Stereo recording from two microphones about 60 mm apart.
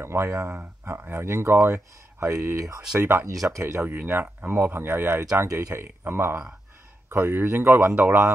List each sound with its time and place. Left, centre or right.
0.0 s speech: right
3.0 s speech: right
3.3 s speech: right
3.8 s speech: right
4.7 s speech: right